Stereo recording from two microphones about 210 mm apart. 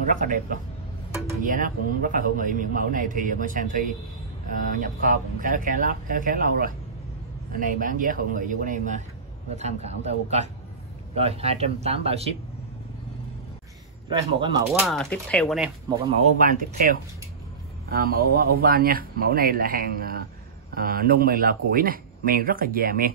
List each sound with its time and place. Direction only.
0.1 s a man's voice: 40° right (ahead or behind)
11.1 s speech: 30° right (ahead or behind)
14.0 s speech: 20° right (ahead or behind)
14.7 s speech: centre (ahead or behind)
16.3 s a man's voice: 40° right (ahead or behind)